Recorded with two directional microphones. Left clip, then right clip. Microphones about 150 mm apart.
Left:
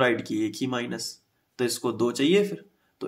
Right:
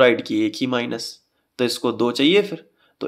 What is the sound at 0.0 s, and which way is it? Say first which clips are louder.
Speech: right 8 dB; 15° right (ahead or behind).